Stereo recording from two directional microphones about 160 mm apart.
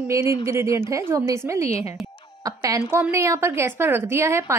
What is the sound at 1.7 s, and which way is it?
Speech, 40° left (ahead or behind).